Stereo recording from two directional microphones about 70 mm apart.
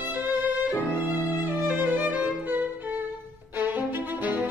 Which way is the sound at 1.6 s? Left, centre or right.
Right.